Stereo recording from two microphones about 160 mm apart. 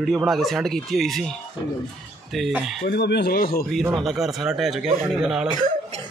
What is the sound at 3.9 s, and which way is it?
Speech, centre (ahead or behind).